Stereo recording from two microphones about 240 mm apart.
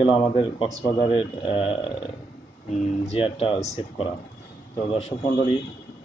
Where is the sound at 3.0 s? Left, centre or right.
Left.